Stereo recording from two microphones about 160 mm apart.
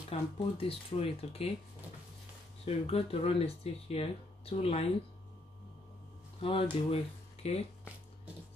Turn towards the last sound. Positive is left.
turn(degrees=40)  # may be behind; listen again after turning